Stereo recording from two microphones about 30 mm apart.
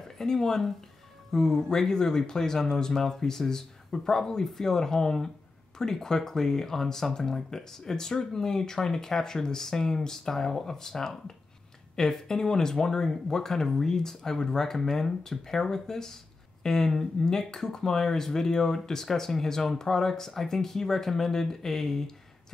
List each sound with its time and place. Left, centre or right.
0.2 s speech: centre